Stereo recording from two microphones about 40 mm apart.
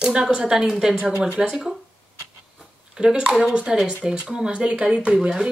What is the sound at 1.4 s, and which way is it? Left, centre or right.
Speech, right.